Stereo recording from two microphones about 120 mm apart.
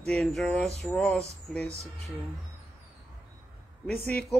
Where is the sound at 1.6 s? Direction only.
65° right (ahead or behind).